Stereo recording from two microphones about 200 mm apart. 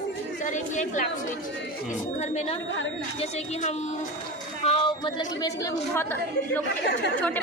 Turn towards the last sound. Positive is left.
turn(degrees=15)  # may be behind; listen again after turning